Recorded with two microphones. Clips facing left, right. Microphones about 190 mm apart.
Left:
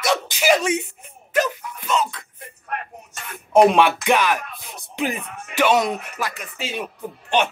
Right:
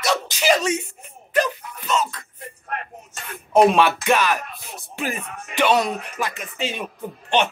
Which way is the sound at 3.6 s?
15° left (ahead or behind).